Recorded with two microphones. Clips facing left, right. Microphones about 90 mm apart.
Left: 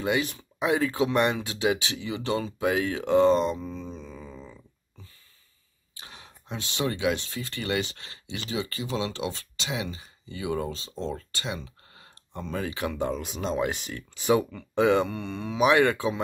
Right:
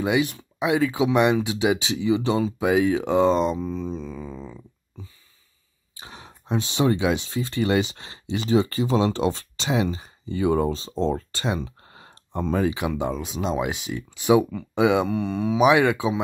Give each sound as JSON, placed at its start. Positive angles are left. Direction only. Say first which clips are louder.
{"t": 0.2, "sound": "speech", "louder": "right 4 dB", "side_deg": -5}
{"t": 5.9, "sound": "a sound", "louder": "right 5 dB", "side_deg": -25}
{"t": 7.2, "sound": "speech", "louder": "right 8 dB", "side_deg": -25}
{"t": 12.7, "sound": "speech", "louder": "right 3 dB", "side_deg": -10}
{"t": 13.1, "sound": "speech", "louder": "right 3 dB", "side_deg": 0}